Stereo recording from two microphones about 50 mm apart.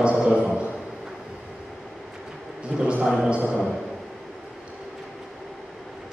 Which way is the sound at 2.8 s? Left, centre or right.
Right.